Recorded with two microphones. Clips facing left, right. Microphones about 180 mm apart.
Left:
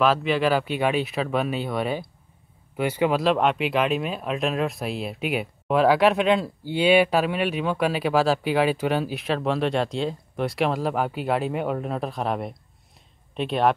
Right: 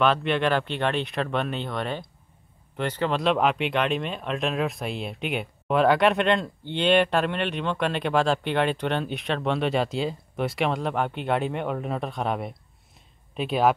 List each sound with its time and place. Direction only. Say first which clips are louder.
0.0 s speech: left 2 dB; centre (ahead or behind)